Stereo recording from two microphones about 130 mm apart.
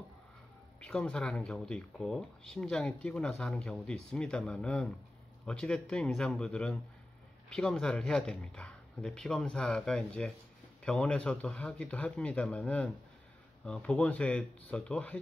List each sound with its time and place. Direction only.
0.7 s speech: 5° left (ahead or behind)